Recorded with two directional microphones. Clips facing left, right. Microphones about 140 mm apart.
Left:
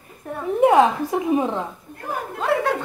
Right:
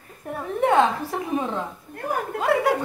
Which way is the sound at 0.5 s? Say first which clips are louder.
Left 4 dB; 10° left (ahead or behind).